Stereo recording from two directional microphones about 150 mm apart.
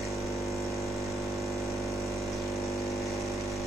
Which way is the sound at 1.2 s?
Centre (ahead or behind).